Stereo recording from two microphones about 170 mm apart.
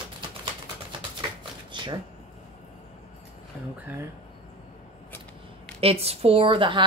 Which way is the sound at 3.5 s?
10° right (ahead or behind).